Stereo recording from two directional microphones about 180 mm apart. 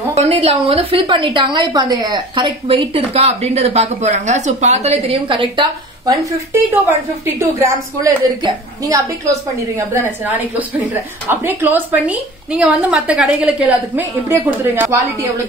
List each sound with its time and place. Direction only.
0.1 s a woman's voice: 35° right (ahead or behind); by 15.4 s 15° right (ahead or behind)